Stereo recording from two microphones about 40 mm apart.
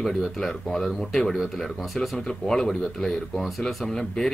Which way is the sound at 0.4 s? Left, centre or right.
Centre.